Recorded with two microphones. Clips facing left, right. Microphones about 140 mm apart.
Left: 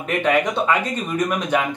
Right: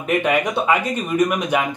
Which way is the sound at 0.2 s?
10° right (ahead or behind).